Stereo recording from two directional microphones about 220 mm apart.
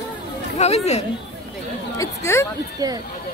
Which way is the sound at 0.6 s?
30° left (ahead or behind).